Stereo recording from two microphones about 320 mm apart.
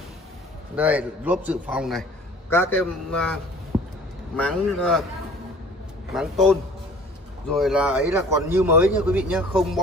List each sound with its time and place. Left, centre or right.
0.7 s a man's voice: centre
3.7 s a sound: centre
4.4 s a man's voice: centre
6.1 s a man's voice: centre
7.5 s a man's voice: centre